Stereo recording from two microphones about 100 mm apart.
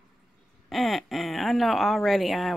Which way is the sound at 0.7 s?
Centre (ahead or behind).